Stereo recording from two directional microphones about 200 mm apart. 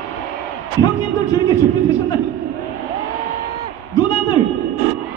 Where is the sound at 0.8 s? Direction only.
15° left (ahead or behind).